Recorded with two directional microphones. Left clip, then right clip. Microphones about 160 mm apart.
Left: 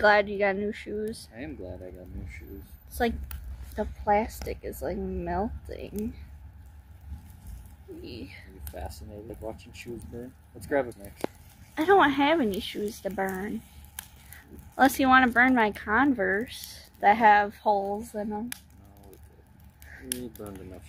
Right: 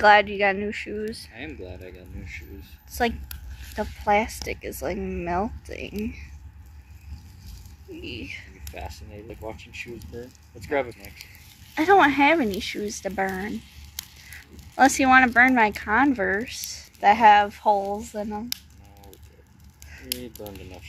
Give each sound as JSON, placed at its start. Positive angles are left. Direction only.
{"t": 0.0, "sound": "speech", "side_deg": -5}
{"t": 1.8, "sound": "speech", "side_deg": 80}
{"t": 2.9, "sound": "a woman's voice", "side_deg": -5}
{"t": 8.0, "sound": "speech", "side_deg": -5}
{"t": 8.7, "sound": "speech", "side_deg": 90}
{"t": 11.7, "sound": "speech", "side_deg": -10}
{"t": 14.8, "sound": "speech", "side_deg": -5}